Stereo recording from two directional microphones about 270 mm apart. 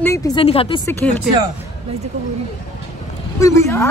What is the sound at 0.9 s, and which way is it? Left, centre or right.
Speech, centre.